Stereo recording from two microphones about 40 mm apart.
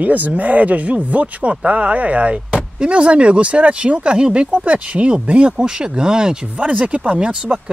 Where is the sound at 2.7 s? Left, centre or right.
Right.